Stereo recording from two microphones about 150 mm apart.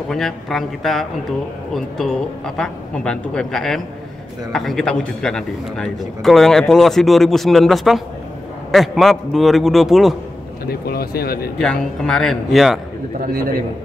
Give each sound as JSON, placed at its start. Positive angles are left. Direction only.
{"t": 0.1, "sound": "a man's voice", "side_deg": 0}
{"t": 10.7, "sound": "speech", "side_deg": 90}
{"t": 11.6, "sound": "a man's voice", "side_deg": 5}
{"t": 13.3, "sound": "a man's voice", "side_deg": -80}